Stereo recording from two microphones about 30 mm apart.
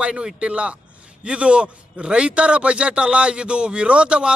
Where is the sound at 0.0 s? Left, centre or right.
Right.